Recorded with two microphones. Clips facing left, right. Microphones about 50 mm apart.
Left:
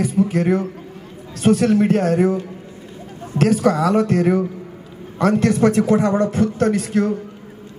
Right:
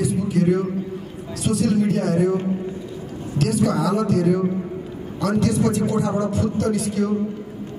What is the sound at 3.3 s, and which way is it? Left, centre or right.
A man's voice, left.